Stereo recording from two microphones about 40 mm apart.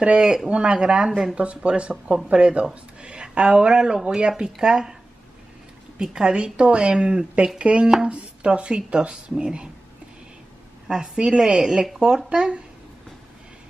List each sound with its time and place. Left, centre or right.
0.0 s a man's voice: right
6.1 s speech: right
10.9 s speech: centre